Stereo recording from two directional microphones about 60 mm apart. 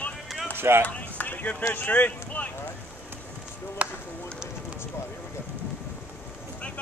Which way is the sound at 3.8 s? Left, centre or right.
Right.